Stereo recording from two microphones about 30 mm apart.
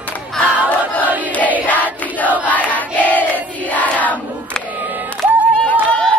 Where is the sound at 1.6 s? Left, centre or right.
Left.